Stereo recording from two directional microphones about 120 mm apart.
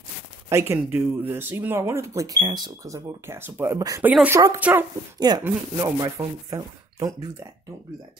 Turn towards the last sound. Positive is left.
turn(degrees=-30)  # may be behind; listen again after turning